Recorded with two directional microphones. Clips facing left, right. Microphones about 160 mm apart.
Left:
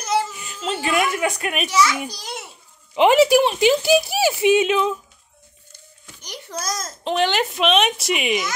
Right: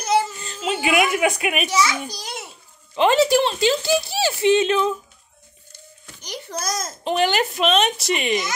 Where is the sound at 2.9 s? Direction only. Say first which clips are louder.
Left 3 dB; 15° left (ahead or behind).